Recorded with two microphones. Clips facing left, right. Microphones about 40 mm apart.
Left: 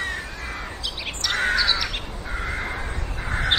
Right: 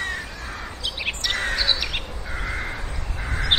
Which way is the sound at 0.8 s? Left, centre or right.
Centre.